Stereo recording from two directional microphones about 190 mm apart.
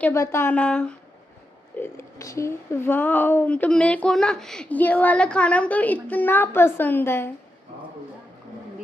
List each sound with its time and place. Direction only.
0.0 s speech: 15° left (ahead or behind)